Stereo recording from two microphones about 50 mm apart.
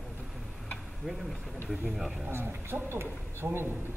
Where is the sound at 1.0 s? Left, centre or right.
Centre.